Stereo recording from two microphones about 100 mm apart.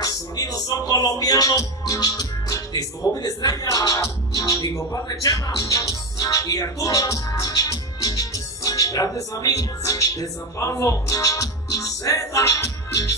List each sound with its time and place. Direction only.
0.0 s music: 40° left (ahead or behind)
3.2 s speech: 40° left (ahead or behind)